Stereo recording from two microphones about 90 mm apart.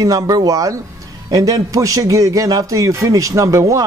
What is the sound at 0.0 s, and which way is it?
A man's voice, 45° right (ahead or behind).